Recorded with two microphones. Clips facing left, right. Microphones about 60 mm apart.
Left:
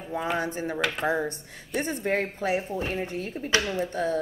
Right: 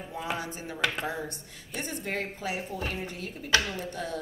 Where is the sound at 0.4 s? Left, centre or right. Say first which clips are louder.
Left 7 dB; left.